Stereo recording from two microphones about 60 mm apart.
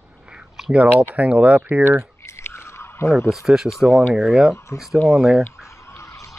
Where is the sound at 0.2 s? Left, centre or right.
Centre.